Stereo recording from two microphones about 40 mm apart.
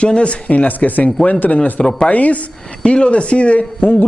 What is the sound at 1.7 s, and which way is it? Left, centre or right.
Speech, left.